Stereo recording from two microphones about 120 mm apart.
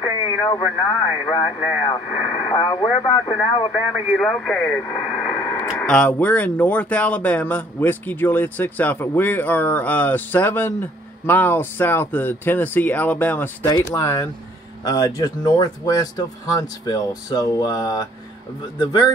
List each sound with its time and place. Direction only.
0.0 s radio: 35° left (ahead or behind)
1.2 s speech: 40° left (ahead or behind)
4.1 s speech: 5° left (ahead or behind)
4.9 s radio: 10° right (ahead or behind)
5.4 s radio: 15° left (ahead or behind)
5.8 s speech: 5° left (ahead or behind)
13.7 s speech: 30° left (ahead or behind)